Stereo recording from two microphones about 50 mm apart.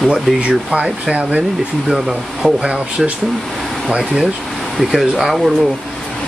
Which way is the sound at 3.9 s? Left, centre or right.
Centre.